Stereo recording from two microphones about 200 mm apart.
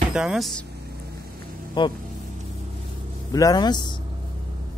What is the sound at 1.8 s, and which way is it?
Speech, 25° left (ahead or behind).